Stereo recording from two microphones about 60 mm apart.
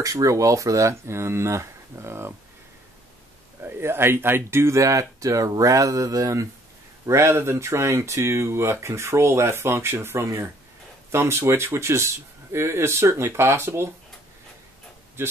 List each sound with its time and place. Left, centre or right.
0.0 s speech: right
3.6 s speech: right
7.1 s speech: right
15.2 s speech: right